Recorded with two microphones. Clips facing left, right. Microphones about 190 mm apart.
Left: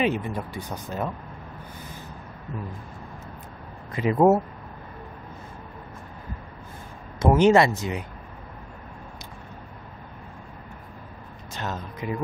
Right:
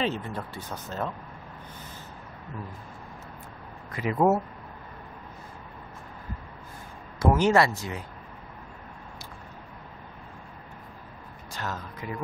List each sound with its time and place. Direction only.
0.0 s speech: 15° left (ahead or behind)
3.9 s speech: 25° left (ahead or behind)
7.2 s speech: 20° left (ahead or behind)
11.5 s speech: 20° left (ahead or behind)